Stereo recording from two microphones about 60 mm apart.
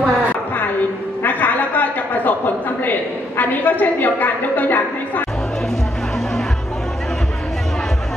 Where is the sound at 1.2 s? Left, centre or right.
Left.